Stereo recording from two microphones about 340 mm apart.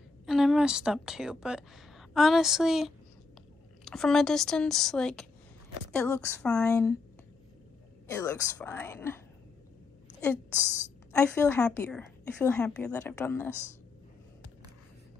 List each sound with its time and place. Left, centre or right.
0.3 s a woman's voice: centre
8.1 s speech: centre
11.1 s a woman's voice: centre